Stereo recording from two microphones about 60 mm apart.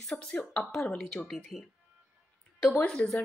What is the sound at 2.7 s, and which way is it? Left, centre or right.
Speech, centre.